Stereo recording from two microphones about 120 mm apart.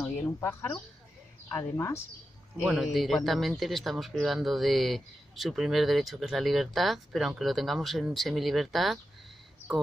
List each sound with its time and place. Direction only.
0.4 s speech: 20° left (ahead or behind)
2.5 s a man's voice: 5° right (ahead or behind)